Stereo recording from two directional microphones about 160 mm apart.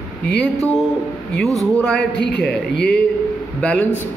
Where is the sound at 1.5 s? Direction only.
20° right (ahead or behind).